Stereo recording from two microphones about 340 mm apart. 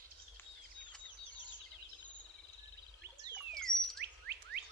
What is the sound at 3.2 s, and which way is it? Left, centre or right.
Bird, centre.